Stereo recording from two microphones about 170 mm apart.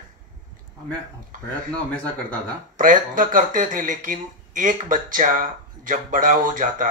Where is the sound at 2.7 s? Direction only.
50° right (ahead or behind).